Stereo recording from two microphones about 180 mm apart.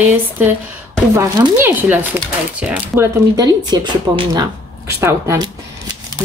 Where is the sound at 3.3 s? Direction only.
20° right (ahead or behind).